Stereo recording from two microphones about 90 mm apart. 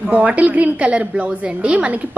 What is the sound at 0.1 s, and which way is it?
A woman's voice, 15° right (ahead or behind).